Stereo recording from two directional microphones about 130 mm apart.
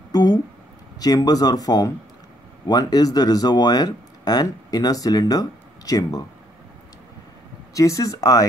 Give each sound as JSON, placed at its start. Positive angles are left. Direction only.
{"t": 0.1, "sound": "a sound", "side_deg": 30}
{"t": 0.9, "sound": "speech", "side_deg": 30}
{"t": 7.7, "sound": "speech", "side_deg": 25}